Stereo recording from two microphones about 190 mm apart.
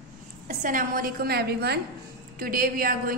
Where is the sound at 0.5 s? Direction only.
40° right (ahead or behind).